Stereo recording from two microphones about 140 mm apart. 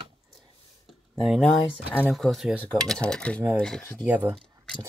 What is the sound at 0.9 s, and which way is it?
Speech, centre (ahead or behind).